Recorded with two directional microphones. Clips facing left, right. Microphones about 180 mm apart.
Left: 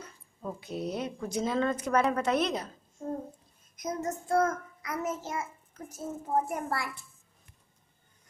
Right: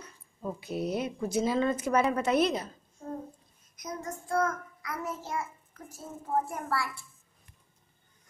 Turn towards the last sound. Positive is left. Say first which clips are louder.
# right 1 dB
turn(degrees=15)  # may be behind; listen again after turning